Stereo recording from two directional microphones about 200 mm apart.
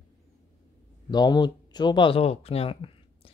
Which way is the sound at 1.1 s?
20° left (ahead or behind).